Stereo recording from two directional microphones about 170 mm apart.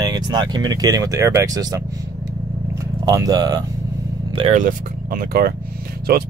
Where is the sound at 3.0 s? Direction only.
20° right (ahead or behind).